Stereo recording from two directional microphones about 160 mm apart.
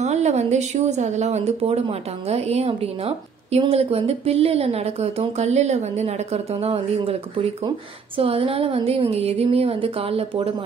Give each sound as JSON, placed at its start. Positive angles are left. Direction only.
{"t": 0.0, "sound": "speech", "side_deg": -45}
{"t": 8.2, "sound": "speech", "side_deg": -35}